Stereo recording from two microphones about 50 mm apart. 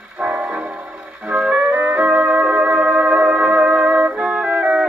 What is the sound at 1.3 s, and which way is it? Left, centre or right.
Music, right.